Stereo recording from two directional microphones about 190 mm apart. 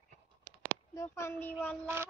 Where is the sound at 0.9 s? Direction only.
15° left (ahead or behind).